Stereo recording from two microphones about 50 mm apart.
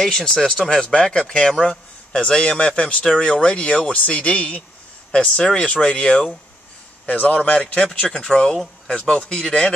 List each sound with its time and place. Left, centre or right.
0.0 s speech: centre